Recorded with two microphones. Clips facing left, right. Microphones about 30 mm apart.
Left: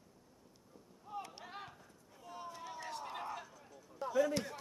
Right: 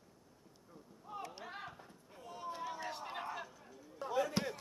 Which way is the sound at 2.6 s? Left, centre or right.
Centre.